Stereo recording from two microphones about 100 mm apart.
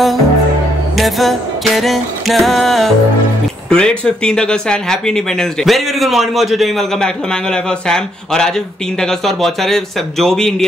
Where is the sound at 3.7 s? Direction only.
10° left (ahead or behind).